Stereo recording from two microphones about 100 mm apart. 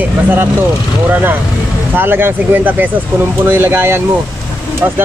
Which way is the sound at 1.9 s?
20° right (ahead or behind).